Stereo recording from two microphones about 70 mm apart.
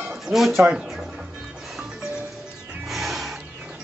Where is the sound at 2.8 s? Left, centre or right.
Centre.